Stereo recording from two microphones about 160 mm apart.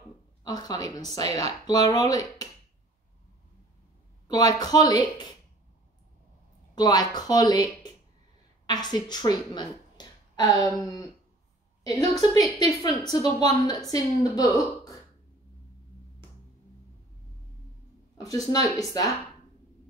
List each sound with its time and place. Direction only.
0.4 s speech: 25° left (ahead or behind)
4.3 s speech: 25° left (ahead or behind)
6.7 s speech: 25° left (ahead or behind)
18.1 s speech: 25° left (ahead or behind)